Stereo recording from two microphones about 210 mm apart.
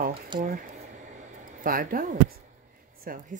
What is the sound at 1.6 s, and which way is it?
Speech, 40° right (ahead or behind).